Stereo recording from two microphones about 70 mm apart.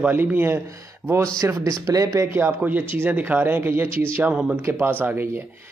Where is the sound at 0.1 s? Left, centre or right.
Right.